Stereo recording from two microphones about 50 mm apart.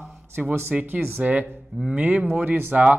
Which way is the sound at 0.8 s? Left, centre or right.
Right.